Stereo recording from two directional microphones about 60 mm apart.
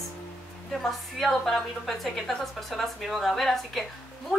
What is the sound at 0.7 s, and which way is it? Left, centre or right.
A woman's voice, centre.